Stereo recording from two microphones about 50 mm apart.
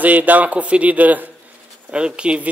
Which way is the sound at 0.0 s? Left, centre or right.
Right.